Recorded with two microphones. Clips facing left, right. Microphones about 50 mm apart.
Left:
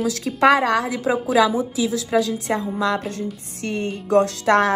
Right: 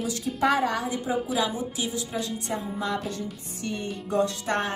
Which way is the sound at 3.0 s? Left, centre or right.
Left.